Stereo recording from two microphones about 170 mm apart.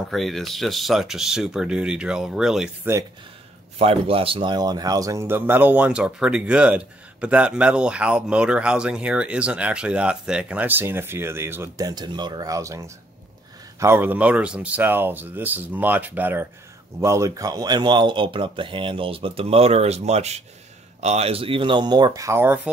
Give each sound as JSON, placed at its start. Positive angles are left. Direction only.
{"t": 0.1, "sound": "speech", "side_deg": 0}
{"t": 3.7, "sound": "speech", "side_deg": -35}